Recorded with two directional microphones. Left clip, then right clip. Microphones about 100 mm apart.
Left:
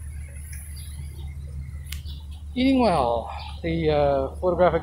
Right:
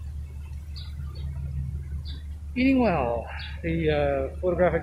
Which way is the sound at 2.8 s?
20° left (ahead or behind).